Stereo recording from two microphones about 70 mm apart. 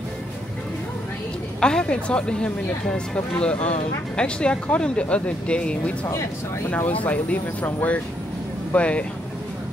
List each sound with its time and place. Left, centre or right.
1.6 s speech: centre